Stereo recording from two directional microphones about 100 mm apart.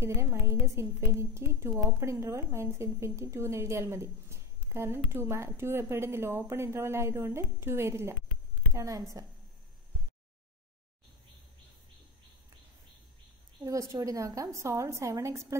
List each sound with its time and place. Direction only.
0.0 s a woman's voice: 30° right (ahead or behind)
13.7 s a woman's voice: 35° right (ahead or behind)